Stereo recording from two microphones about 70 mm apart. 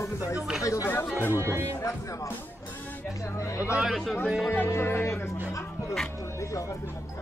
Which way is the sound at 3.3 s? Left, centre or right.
Left.